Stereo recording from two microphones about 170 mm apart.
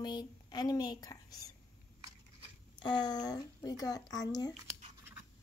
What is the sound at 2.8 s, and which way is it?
Speech, 25° left (ahead or behind).